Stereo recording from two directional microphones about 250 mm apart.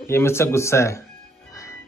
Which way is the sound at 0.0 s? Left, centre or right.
Centre.